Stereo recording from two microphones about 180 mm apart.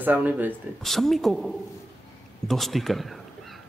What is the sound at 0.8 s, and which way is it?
A man's voice, centre (ahead or behind).